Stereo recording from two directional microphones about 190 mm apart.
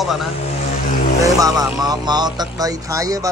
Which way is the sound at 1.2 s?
20° right (ahead or behind).